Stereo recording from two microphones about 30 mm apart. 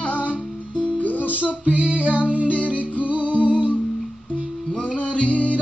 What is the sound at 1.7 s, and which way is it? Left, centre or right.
Music, right.